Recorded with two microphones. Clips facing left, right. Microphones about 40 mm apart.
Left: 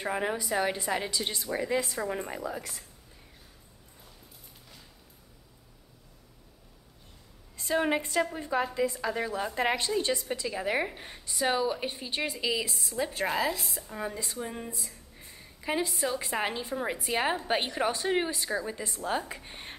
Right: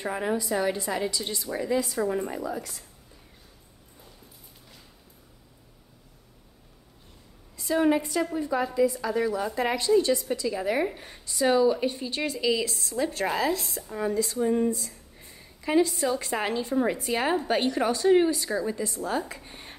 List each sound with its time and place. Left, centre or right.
0.0 s a woman's voice: centre
1.5 s a woman's voice: centre
7.5 s a sound: left
7.8 s a woman's voice: left; by 14.1 s centre
14.1 s a woman's voice: centre
14.4 s a sound: centre
14.8 s a woman's voice: centre; by 19.7 s left